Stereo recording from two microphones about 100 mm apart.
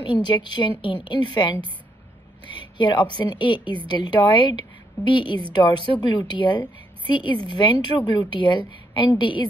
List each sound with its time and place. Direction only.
0.0 s a woman's voice: 50° left (ahead or behind)